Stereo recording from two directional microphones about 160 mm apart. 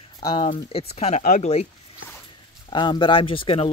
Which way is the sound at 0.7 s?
40° left (ahead or behind).